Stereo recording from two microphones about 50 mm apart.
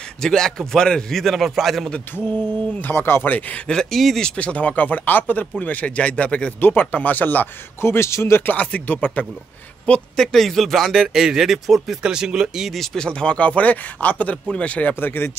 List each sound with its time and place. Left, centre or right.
0.2 s speech: centre
1.2 s speech: centre
2.9 s speech: left
3.9 s speech: centre
4.2 s speech: left
6.6 s speech: left
7.8 s a man's voice: left
8.4 s speech: left
10.1 s speech: centre
12.0 s speech: centre
12.9 s speech: centre
15.0 s speech: left